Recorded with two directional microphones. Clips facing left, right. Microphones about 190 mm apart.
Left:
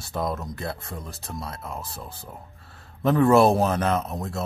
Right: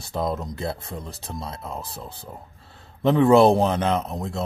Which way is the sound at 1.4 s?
20° right (ahead or behind).